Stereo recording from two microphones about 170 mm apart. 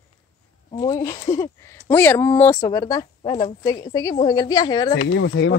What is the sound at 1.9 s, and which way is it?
Speech, 15° left (ahead or behind).